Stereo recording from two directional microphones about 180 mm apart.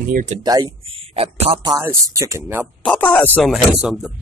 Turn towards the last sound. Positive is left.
turn(degrees=-5)  # may be behind; listen again after turning